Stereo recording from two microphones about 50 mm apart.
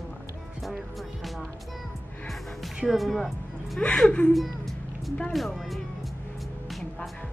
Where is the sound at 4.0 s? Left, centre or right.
Centre.